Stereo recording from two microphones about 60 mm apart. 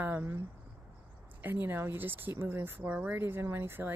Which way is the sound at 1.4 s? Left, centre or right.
Right.